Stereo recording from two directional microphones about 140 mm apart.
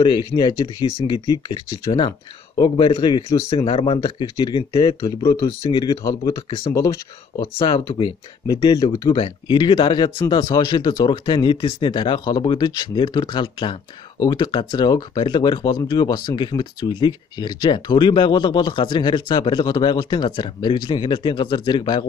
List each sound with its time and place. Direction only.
0.0 s speech: 35° left (ahead or behind)
6.7 s speech: 20° left (ahead or behind)
7.5 s speech: 35° left (ahead or behind)